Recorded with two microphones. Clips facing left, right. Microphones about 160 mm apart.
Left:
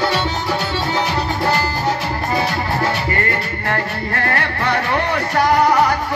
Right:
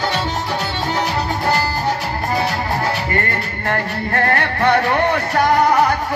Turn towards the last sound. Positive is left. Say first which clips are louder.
# right 4 dB
turn(degrees=-50)  # may be behind; listen again after turning